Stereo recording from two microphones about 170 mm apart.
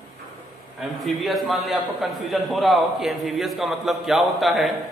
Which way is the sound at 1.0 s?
Centre (ahead or behind).